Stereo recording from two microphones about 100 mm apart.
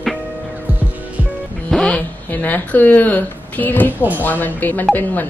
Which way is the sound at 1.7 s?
10° left (ahead or behind).